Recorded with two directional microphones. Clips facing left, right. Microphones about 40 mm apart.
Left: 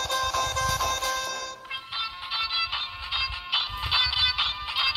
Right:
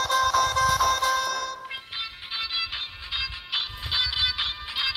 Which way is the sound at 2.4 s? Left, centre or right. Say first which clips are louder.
Left 1 dB; centre.